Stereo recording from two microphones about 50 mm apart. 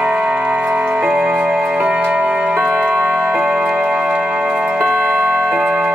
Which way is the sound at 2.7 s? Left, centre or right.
Centre.